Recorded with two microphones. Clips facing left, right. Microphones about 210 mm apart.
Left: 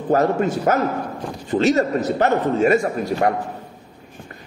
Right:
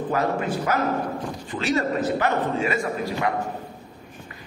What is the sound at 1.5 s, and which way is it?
A man's voice, 40° left (ahead or behind).